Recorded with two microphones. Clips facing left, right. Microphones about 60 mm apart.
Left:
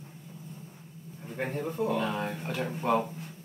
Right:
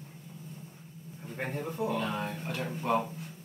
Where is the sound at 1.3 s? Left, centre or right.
Centre.